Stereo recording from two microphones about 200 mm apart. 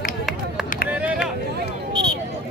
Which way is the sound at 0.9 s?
5° right (ahead or behind).